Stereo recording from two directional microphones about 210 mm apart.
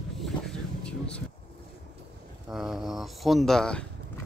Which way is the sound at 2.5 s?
Centre (ahead or behind).